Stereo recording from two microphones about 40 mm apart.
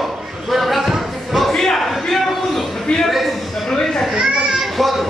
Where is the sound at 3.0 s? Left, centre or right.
Centre.